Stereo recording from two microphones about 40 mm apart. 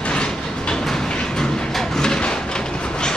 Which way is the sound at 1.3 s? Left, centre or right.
Centre.